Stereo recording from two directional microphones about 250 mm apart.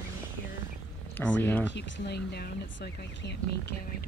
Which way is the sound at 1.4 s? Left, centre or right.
Centre.